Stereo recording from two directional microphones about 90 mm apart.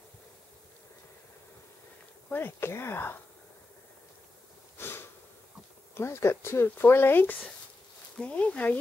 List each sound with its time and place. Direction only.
2.3 s speech: 25° left (ahead or behind)
4.7 s a sound: 25° left (ahead or behind)
5.9 s speech: 30° left (ahead or behind)
8.2 s speech: 15° left (ahead or behind)